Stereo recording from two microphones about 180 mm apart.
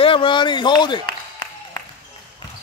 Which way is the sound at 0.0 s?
30° left (ahead or behind).